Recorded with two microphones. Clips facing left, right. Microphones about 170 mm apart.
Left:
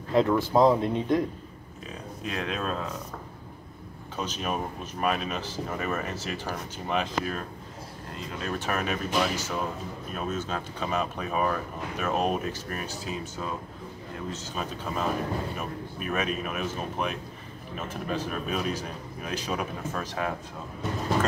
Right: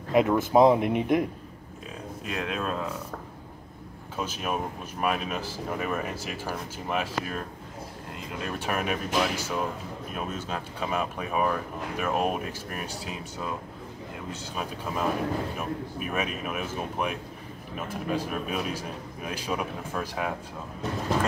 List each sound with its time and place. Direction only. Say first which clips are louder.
0.1 s speech: right 1 dB; 15° right (ahead or behind)
2.2 s speech: even; 5° right (ahead or behind)
4.2 s a man's voice: even; 10° right (ahead or behind)
14.3 s a man's voice: right 2 dB; 10° right (ahead or behind)